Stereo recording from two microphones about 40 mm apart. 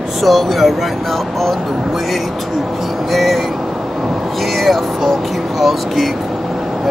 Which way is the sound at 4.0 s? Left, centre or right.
Right.